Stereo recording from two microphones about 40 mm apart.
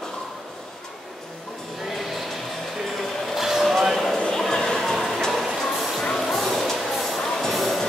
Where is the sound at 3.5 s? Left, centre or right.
Centre.